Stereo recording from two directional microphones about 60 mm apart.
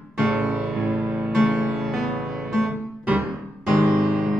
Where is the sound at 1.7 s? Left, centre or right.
Centre.